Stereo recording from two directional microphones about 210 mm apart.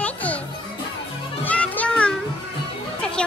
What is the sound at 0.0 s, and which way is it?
Children playing, 5° left (ahead or behind).